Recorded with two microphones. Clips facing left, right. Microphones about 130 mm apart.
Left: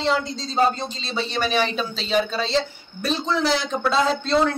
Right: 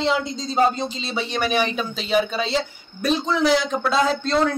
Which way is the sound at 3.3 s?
Centre (ahead or behind).